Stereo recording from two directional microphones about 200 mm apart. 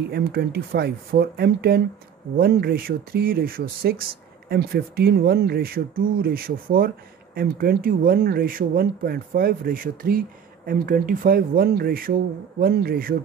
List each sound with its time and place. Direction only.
0.1 s speech: 50° right (ahead or behind)